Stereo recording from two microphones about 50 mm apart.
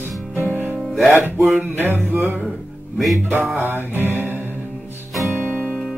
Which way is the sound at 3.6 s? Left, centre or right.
Right.